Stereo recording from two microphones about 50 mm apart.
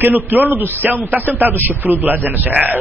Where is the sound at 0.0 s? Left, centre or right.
Right.